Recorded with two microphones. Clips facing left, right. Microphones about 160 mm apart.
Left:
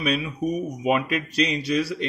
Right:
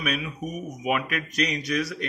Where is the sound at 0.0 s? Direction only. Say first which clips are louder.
Left 5 dB; 30° left (ahead or behind).